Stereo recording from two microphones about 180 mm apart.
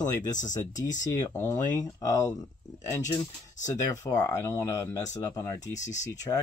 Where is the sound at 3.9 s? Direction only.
20° left (ahead or behind).